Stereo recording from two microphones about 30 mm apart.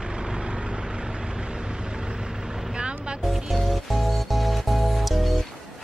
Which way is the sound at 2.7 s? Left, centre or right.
Right.